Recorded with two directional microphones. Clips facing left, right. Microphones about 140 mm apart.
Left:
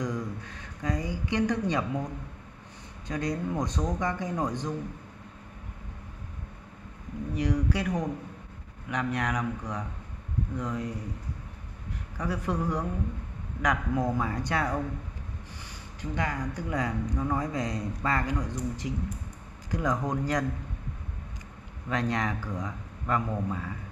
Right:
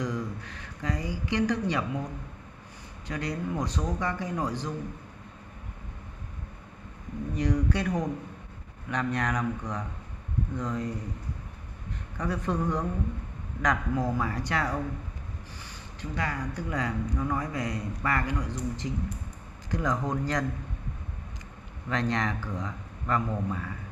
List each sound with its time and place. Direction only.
0.0 s a woman's voice: 15° left (ahead or behind)
3.1 s speech: 20° left (ahead or behind)
7.3 s speech: 5° left (ahead or behind)
12.2 s a woman's voice: 5° left (ahead or behind)
21.8 s a woman's voice: 15° left (ahead or behind)